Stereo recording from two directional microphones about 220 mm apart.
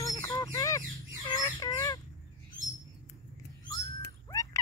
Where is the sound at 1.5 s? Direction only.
15° left (ahead or behind).